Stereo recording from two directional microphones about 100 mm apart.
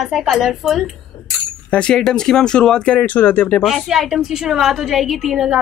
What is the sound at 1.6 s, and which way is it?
Speech, 10° left (ahead or behind).